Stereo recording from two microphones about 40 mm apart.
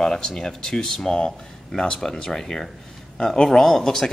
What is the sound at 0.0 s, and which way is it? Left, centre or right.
Speech, centre.